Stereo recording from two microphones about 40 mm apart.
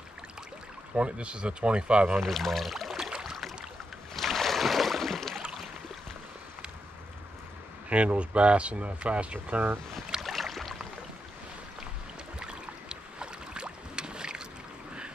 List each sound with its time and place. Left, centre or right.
0.9 s speech: right
2.1 s speech: centre
3.0 s boat: centre
4.1 s a sound: centre
7.9 s speech: right
10.2 s boat: centre
12.4 s boat: right